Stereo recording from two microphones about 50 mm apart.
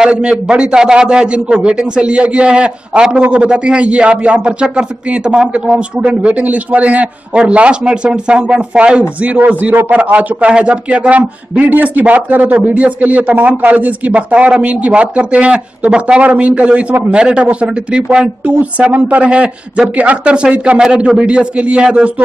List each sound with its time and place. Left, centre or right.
0.0 s a man's voice: centre
18.4 s a man's voice: right